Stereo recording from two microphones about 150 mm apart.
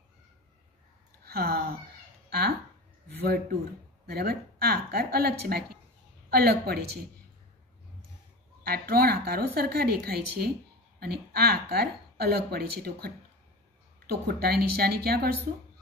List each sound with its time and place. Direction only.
1.2 s speech: 90° right
2.2 s a sound: 90° right
3.3 s a woman's voice: 90° right
8.6 s a woman's voice: 85° right